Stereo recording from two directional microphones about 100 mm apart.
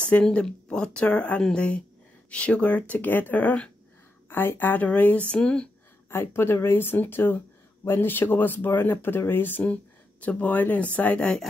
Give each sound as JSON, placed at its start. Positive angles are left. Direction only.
{"t": 0.0, "sound": "speech", "side_deg": 10}
{"t": 6.0, "sound": "speech", "side_deg": 20}